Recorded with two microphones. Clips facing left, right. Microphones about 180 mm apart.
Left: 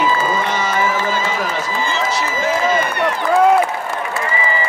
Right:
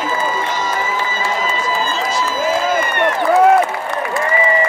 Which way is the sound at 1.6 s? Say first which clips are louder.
Right 1 dB; 70° left (ahead or behind).